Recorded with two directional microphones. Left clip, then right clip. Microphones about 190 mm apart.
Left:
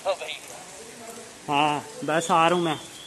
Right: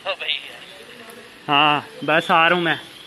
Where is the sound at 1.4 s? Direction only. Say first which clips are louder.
Right 7 dB; 20° right (ahead or behind).